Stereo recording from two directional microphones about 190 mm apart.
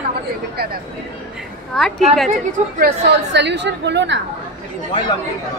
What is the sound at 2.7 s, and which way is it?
A woman's voice, 60° right (ahead or behind).